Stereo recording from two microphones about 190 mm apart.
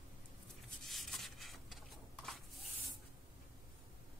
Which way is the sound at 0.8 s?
Centre (ahead or behind).